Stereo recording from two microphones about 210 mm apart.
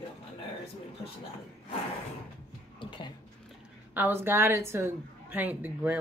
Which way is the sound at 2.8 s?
25° left (ahead or behind).